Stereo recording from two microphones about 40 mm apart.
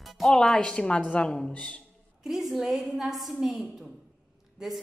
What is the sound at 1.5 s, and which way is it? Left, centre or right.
Speech, left.